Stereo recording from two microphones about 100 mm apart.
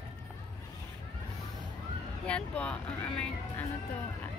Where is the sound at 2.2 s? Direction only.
10° left (ahead or behind).